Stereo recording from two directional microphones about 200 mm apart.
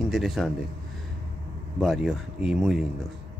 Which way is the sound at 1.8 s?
Centre (ahead or behind).